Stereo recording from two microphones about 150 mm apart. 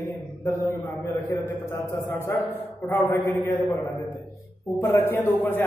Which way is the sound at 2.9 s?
15° left (ahead or behind).